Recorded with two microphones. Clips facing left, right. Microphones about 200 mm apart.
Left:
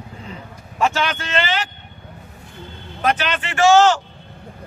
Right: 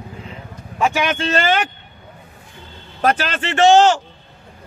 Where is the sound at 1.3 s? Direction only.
50° right (ahead or behind).